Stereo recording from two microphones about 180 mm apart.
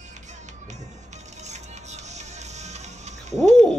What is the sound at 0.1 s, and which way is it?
Music, 40° right (ahead or behind).